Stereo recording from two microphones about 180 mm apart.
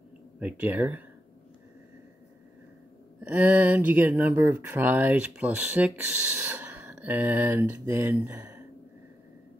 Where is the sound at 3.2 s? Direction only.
10° right (ahead or behind).